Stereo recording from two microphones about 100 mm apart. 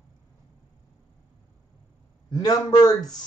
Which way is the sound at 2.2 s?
40° left (ahead or behind).